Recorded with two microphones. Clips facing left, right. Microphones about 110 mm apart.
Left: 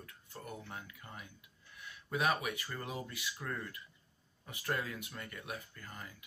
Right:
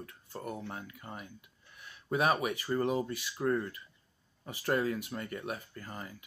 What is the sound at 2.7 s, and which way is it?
Speech, 40° right (ahead or behind).